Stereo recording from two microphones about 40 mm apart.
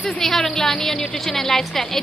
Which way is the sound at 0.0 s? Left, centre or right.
Centre.